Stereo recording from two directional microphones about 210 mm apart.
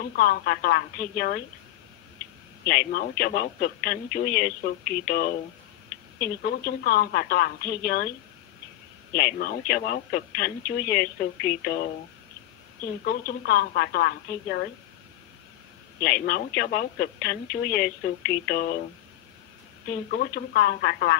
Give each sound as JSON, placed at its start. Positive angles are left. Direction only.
{"t": 0.1, "sound": "a woman's voice", "side_deg": 45}
{"t": 2.6, "sound": "a woman's voice", "side_deg": 45}
{"t": 9.1, "sound": "a woman's voice", "side_deg": 45}
{"t": 13.0, "sound": "a woman's voice", "side_deg": 45}
{"t": 16.0, "sound": "a woman's voice", "side_deg": 45}
{"t": 20.2, "sound": "a woman's voice", "side_deg": 45}